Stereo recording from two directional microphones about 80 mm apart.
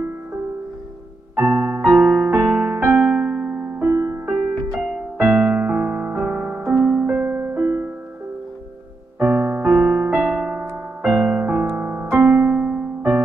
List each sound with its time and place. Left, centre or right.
1.3 s music: centre
3.1 s piano: centre
3.9 s music: right
4.7 s music: centre
5.2 s music: centre
9.2 s music: centre